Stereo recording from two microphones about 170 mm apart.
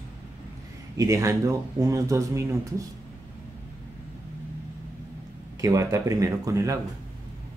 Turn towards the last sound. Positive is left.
turn(degrees=-20)  # may be behind; listen again after turning